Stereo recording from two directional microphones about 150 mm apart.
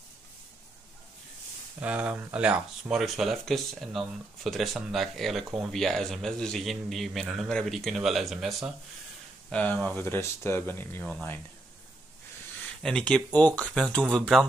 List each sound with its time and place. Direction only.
1.8 s speech: 10° right (ahead or behind); by 11.3 s 10° left (ahead or behind)
12.8 s speech: 5° left (ahead or behind)